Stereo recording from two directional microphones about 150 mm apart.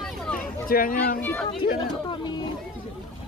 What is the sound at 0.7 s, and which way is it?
Speech, 70° left (ahead or behind).